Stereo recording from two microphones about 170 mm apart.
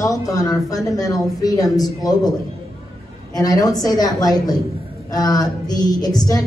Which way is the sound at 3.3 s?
20° left (ahead or behind).